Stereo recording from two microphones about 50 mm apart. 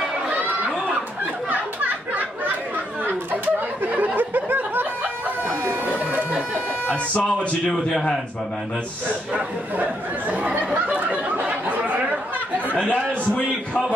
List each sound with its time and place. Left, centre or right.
3.9 s snicker: right
5.5 s a sound: right
6.3 s music: right
7.6 s a man's voice: centre
9.3 s speech: right
11.4 s chatter: right
12.7 s speech: left